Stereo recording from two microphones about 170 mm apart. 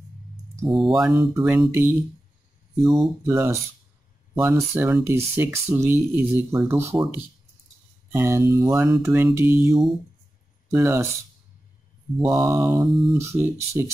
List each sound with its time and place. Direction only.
0.7 s speech: 5° right (ahead or behind)
1.1 s speech: 15° right (ahead or behind)
3.0 s speech: 15° right (ahead or behind)
8.1 s speech: 15° right (ahead or behind)
12.2 s speech: 20° right (ahead or behind)